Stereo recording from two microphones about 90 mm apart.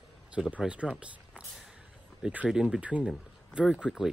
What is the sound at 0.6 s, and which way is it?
Speech, 10° right (ahead or behind).